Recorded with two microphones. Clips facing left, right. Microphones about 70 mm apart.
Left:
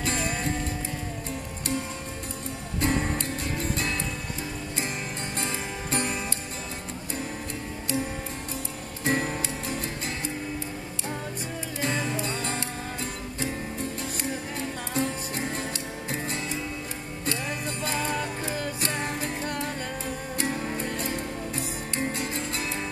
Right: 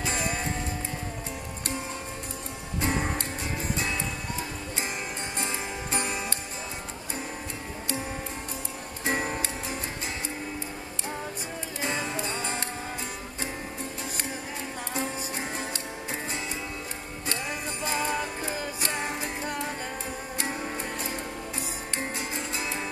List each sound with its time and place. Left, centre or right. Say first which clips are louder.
0.0 s music: left 1 dB; centre
2.8 s music: left 2 dB; centre
5.4 s music: even; centre
9.0 s music: left 2 dB; centre
11.8 s music: left 2 dB; centre
15.0 s music: left 4 dB; centre
17.5 s music: left 1 dB; centre